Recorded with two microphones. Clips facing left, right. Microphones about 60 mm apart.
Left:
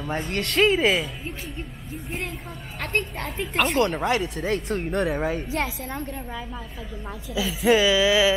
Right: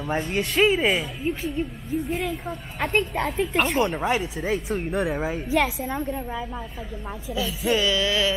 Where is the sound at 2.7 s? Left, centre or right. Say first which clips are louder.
Right 4 dB; centre.